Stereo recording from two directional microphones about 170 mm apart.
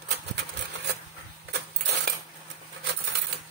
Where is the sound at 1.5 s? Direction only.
75° right (ahead or behind).